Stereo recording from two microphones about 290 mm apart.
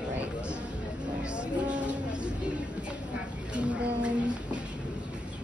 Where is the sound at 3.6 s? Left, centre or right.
Centre.